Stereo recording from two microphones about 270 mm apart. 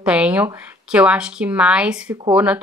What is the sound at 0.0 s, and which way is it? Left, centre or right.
Speech, centre.